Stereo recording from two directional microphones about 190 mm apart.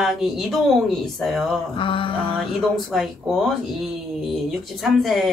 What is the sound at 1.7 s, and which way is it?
Mantra, 25° left (ahead or behind).